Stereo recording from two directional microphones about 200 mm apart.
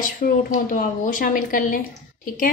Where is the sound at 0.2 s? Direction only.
40° left (ahead or behind).